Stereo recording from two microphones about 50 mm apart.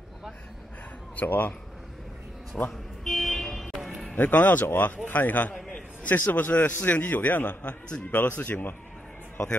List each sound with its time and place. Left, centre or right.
1.1 s a man's voice: left
2.5 s speech: centre
3.0 s vehicle: centre
4.1 s a man's voice: left